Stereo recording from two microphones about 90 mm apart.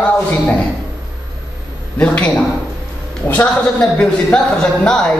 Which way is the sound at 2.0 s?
15° left (ahead or behind).